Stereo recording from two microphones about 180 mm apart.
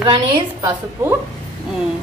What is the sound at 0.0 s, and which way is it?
Speech, 25° right (ahead or behind).